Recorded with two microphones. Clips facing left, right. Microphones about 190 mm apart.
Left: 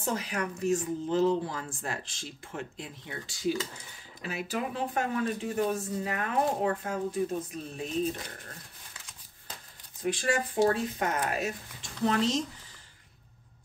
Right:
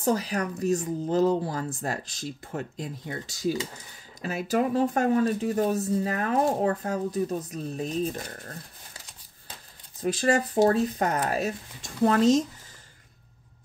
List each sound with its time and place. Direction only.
0.0 s speech: 35° right (ahead or behind)
10.0 s speech: 40° right (ahead or behind)